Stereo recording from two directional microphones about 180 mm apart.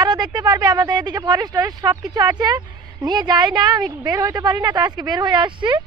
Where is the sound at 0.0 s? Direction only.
25° right (ahead or behind).